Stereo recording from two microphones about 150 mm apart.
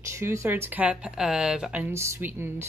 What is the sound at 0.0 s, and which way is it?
Speech, 20° right (ahead or behind).